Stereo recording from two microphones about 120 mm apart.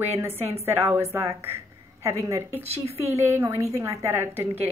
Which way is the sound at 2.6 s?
60° right (ahead or behind).